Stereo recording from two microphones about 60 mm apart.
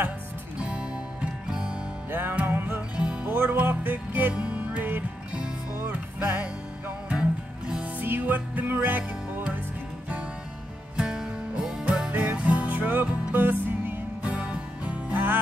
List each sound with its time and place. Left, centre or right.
0.6 s music: centre
2.0 s music: right
3.0 s music: centre
3.3 s music: right
4.3 s music: centre
5.9 s music: right
7.1 s music: centre
7.8 s music: right
11.0 s music: centre; by 14.3 s right
14.3 s music: centre